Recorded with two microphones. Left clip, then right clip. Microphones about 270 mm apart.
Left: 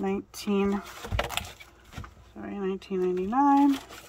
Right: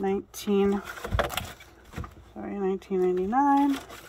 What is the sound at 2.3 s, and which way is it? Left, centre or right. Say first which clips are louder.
Speech: right 3 dB; left.